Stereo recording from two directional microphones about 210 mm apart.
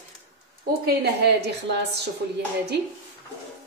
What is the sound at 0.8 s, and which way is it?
Speech, 50° right (ahead or behind).